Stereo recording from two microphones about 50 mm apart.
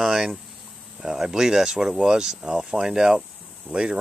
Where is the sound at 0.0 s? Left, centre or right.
Centre.